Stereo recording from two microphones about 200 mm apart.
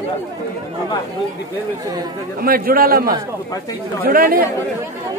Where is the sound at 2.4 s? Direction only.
45° right (ahead or behind).